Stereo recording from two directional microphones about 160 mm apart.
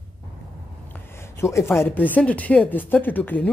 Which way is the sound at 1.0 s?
15° left (ahead or behind).